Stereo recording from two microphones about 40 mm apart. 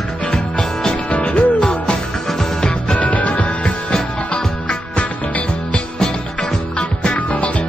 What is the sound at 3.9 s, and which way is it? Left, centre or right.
Music, left.